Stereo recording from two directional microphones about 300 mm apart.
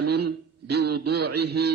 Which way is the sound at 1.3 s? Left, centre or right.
Right.